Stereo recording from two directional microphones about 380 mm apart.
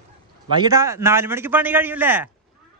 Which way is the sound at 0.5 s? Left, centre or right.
Centre.